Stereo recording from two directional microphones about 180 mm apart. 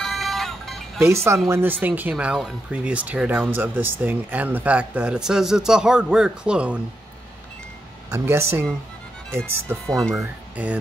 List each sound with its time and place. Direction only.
0.0 s music: centre (ahead or behind)
1.0 s speech: 15° right (ahead or behind)
8.1 s speech: 15° right (ahead or behind)
9.8 s speech: 5° left (ahead or behind)
10.1 s speech: 10° right (ahead or behind)